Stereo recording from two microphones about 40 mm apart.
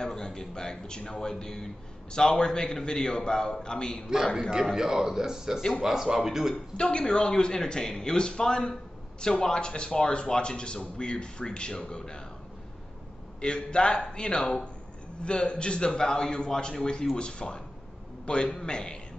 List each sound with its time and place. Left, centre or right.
0.0 s a man's voice: centre
4.7 s speech: centre
6.5 s a man's voice: left
13.4 s a man's voice: left